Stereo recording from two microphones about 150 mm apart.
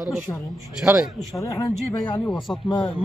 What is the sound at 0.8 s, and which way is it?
Speech, 5° right (ahead or behind).